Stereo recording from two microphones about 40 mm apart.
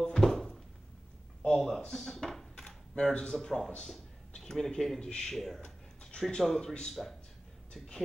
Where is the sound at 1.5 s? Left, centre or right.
Centre.